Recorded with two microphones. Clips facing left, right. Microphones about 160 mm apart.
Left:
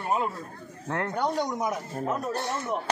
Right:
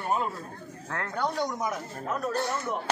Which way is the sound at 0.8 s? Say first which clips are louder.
Left 3 dB; 20° left (ahead or behind).